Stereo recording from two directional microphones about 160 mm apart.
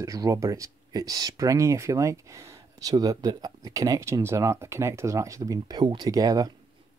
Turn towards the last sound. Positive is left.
turn(degrees=-25)  # may be behind; listen again after turning